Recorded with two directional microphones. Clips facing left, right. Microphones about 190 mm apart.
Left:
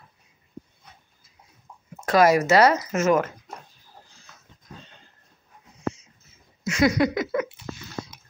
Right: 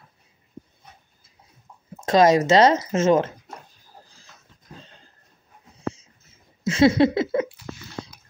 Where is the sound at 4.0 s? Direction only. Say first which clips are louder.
Right 2 dB; 40° right (ahead or behind).